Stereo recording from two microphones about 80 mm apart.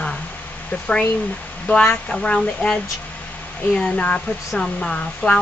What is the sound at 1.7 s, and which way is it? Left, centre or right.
A woman's voice, centre.